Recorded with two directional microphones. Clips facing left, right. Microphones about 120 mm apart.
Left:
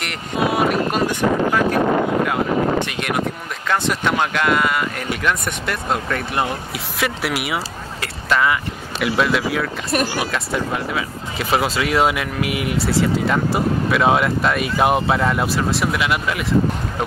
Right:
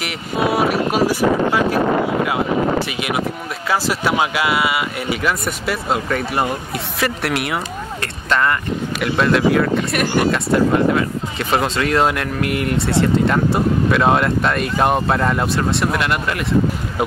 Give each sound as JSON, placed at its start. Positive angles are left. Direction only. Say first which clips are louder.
{"t": 0.0, "sound": "speech", "louder": "right 1 dB", "side_deg": -5}
{"t": 2.9, "sound": "speech", "louder": "right 1 dB", "side_deg": -5}
{"t": 10.0, "sound": "speech", "louder": "right 7 dB", "side_deg": -55}
{"t": 10.3, "sound": "speech", "louder": "right 7 dB", "side_deg": 0}